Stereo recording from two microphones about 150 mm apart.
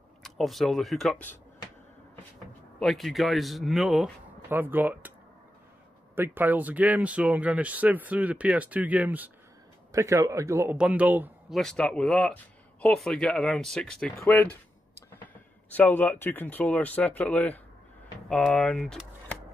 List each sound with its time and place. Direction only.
0.2 s speech: centre (ahead or behind)
2.8 s speech: centre (ahead or behind)
4.5 s speech: 15° right (ahead or behind)
6.1 s speech: 15° right (ahead or behind)
9.9 s speech: 20° right (ahead or behind)
11.5 s speech: 5° left (ahead or behind)
14.1 s speech: 15° left (ahead or behind)
15.7 s speech: 10° left (ahead or behind)